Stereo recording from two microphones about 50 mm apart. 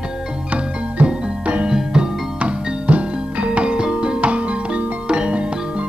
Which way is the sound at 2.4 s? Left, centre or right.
Right.